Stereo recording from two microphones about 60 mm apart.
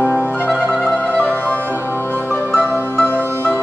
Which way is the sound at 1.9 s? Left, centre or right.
Left.